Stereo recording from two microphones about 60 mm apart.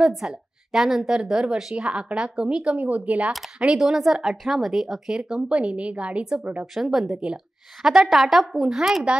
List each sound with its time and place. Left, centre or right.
0.7 s speech: centre
2.6 s speech: right
6.7 s a woman's voice: centre